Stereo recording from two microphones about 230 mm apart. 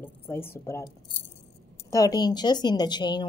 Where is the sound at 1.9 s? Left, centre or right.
Centre.